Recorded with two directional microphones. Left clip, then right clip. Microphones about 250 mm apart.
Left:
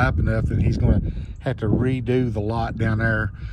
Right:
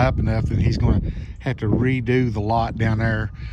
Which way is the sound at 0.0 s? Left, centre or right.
Centre.